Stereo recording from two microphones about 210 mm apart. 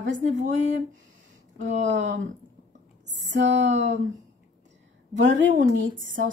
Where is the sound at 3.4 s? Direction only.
55° right (ahead or behind).